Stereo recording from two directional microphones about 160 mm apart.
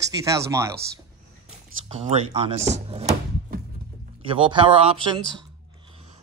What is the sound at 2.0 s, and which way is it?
Speech, 40° right (ahead or behind).